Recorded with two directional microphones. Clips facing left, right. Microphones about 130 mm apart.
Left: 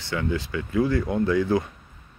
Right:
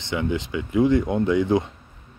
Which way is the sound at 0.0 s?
20° right (ahead or behind).